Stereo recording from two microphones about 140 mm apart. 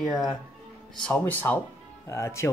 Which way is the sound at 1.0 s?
10° left (ahead or behind).